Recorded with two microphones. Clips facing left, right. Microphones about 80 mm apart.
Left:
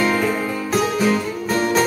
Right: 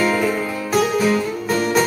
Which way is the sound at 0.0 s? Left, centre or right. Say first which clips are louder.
Even; centre.